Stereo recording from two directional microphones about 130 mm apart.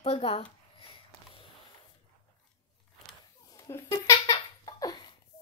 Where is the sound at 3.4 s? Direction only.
30° left (ahead or behind).